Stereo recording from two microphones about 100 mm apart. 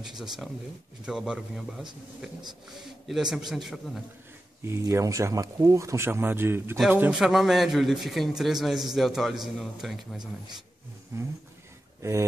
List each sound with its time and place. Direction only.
0.0 s a man's voice: 5° right (ahead or behind)
4.6 s speech: 30° right (ahead or behind)
6.9 s a man's voice: 10° right (ahead or behind)
12.0 s speech: 30° right (ahead or behind)